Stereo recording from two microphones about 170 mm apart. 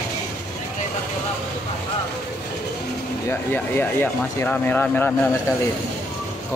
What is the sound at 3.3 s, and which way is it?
Speech, 10° left (ahead or behind).